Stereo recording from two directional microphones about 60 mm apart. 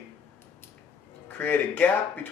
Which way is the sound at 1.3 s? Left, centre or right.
Left.